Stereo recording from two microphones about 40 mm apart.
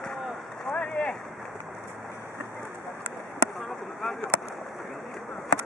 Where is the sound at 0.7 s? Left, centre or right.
Left.